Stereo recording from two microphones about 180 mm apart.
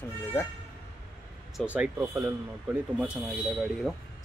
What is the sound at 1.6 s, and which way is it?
Speech, 5° left (ahead or behind).